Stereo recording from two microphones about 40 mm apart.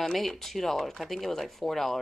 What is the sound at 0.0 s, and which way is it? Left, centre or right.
Speech, centre.